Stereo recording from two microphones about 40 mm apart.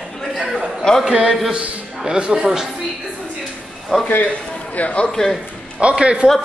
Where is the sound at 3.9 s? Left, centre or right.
Centre.